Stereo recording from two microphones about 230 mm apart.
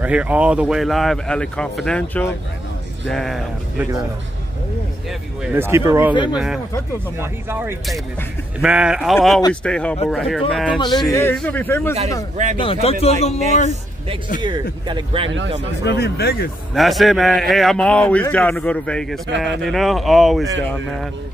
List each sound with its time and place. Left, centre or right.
0.0 s a man's voice: centre
5.4 s a man's voice: centre
11.1 s speech: centre
12.5 s a man's voice: left
14.4 s speech: centre
15.8 s speech: left
16.7 s a man's voice: centre